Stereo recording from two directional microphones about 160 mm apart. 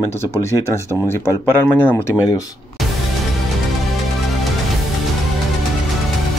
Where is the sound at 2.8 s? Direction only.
Centre (ahead or behind).